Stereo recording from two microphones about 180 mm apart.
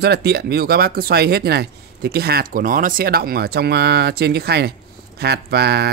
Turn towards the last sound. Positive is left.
turn(degrees=-65)  # may be behind; listen again after turning